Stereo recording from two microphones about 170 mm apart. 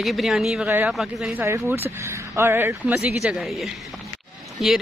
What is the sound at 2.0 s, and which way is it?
A woman's voice, 15° right (ahead or behind).